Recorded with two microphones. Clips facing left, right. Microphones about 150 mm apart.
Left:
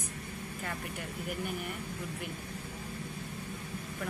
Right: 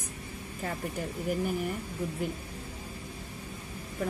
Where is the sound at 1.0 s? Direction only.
35° right (ahead or behind).